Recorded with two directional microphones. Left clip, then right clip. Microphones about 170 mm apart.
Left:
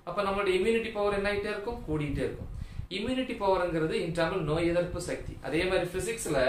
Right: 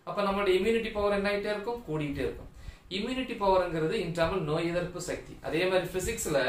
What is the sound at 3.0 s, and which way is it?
A man's voice, 10° left (ahead or behind).